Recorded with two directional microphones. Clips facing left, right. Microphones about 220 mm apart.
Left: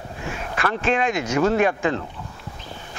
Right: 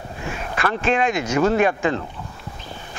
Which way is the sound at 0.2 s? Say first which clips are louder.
Right 1 dB; 15° right (ahead or behind).